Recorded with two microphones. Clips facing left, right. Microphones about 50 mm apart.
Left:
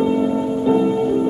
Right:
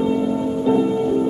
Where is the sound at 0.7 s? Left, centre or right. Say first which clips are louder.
Left 1 dB; centre.